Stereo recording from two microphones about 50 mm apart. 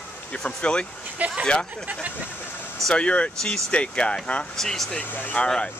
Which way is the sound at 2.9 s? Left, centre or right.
Left.